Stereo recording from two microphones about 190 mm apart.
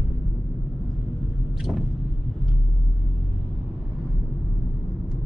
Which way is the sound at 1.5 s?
Centre (ahead or behind).